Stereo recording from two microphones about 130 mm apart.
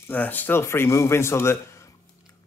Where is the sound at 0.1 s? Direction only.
15° left (ahead or behind).